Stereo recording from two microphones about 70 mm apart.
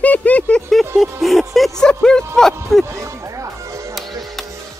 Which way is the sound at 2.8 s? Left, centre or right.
Right.